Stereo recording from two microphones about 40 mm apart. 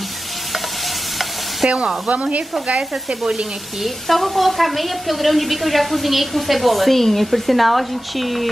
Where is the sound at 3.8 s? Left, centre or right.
Centre.